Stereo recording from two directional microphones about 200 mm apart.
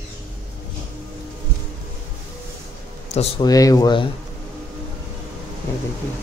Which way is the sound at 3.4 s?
20° left (ahead or behind).